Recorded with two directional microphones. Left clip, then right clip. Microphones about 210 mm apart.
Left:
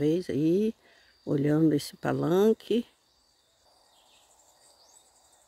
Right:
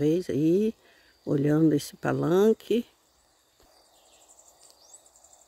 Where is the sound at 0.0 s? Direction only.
5° right (ahead or behind).